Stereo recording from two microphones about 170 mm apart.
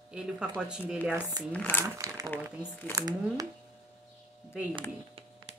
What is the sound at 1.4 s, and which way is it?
Speech, 10° left (ahead or behind).